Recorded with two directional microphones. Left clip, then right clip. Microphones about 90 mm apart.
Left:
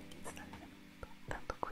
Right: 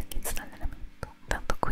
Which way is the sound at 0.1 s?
35° right (ahead or behind).